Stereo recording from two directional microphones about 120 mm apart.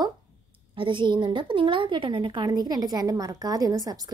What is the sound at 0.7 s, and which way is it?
A woman's voice, 45° right (ahead or behind).